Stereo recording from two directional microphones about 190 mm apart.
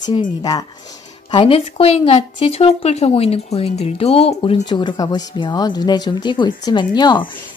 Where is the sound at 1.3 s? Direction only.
25° left (ahead or behind).